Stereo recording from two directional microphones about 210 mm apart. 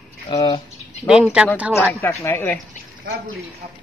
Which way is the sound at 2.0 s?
10° left (ahead or behind).